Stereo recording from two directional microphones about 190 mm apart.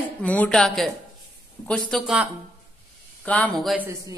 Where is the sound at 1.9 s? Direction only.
5° right (ahead or behind).